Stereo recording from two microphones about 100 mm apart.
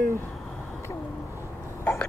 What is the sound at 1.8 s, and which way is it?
Hiccup, 15° left (ahead or behind).